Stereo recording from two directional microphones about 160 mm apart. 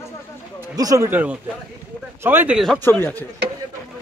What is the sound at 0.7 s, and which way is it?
Speech, 20° right (ahead or behind).